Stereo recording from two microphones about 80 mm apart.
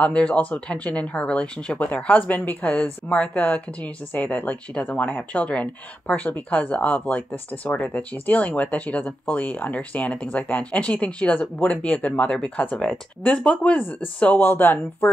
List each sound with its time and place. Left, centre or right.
0.0 s speech: centre